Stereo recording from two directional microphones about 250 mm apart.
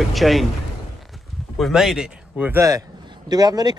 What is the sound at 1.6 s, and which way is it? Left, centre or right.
A man's voice, centre.